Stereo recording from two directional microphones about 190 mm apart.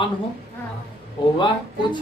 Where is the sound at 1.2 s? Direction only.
25° left (ahead or behind).